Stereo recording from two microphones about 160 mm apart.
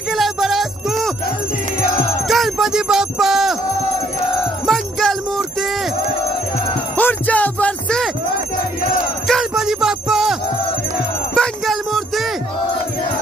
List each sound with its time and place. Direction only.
0.1 s music: centre (ahead or behind)
2.2 s a sound: centre (ahead or behind)
4.6 s music: centre (ahead or behind)
7.0 s music: 10° left (ahead or behind)
9.3 s a sound: centre (ahead or behind)
11.3 s music: 5° left (ahead or behind)